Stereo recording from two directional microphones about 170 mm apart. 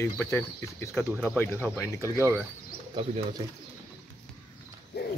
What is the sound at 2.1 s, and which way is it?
Speech, 15° right (ahead or behind).